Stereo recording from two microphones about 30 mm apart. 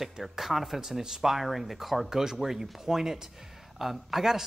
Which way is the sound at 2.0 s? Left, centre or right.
Centre.